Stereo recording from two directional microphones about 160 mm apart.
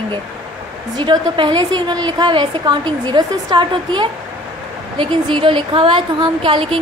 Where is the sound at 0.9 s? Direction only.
30° right (ahead or behind).